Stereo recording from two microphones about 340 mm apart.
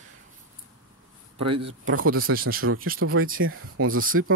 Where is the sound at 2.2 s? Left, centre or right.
Right.